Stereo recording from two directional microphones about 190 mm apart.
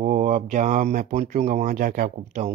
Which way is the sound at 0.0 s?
40° right (ahead or behind).